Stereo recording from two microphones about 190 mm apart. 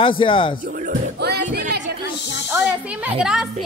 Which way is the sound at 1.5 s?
65° right (ahead or behind).